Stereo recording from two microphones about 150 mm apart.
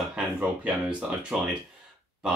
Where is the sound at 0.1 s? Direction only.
5° right (ahead or behind).